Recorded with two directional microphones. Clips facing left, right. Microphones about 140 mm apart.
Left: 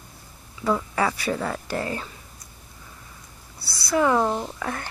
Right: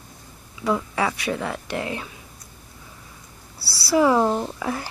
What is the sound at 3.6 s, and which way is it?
Speech, 30° right (ahead or behind).